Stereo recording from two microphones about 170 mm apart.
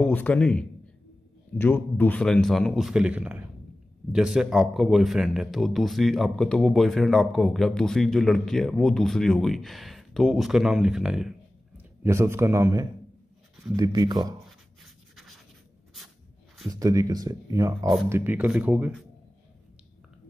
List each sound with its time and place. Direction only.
0.0 s a man's voice: 10° left (ahead or behind)
12.0 s a man's voice: 15° right (ahead or behind)
14.8 s a sound: centre (ahead or behind)
16.6 s speech: 20° right (ahead or behind)
18.1 s a man's voice: 10° right (ahead or behind)